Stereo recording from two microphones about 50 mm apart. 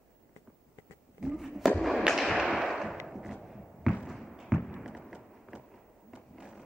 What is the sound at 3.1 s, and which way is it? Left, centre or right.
Thump, centre.